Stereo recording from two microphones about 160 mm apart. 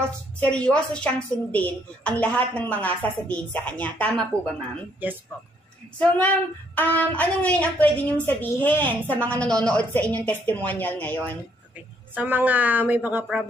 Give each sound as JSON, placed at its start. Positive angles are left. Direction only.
{"t": 0.4, "sound": "a woman's voice", "side_deg": 5}
{"t": 5.9, "sound": "a woman's voice", "side_deg": 10}
{"t": 12.2, "sound": "a woman's voice", "side_deg": -10}